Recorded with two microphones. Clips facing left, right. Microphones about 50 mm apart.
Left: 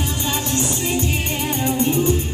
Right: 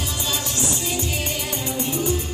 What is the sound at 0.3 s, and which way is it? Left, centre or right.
Music, left.